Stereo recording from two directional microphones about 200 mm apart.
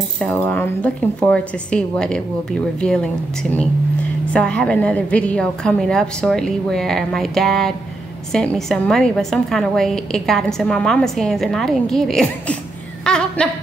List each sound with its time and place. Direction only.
0.2 s a woman's voice: 10° left (ahead or behind)
4.3 s a woman's voice: 5° left (ahead or behind)
13.0 s a sound: 5° left (ahead or behind)